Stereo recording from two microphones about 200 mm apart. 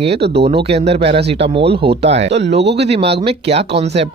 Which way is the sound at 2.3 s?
60° right (ahead or behind).